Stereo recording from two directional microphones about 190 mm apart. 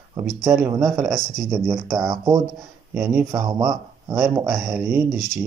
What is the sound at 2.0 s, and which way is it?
Speech, 20° right (ahead or behind).